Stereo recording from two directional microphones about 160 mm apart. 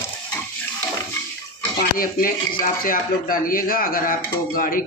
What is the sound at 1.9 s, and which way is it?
Speech, 60° left (ahead or behind).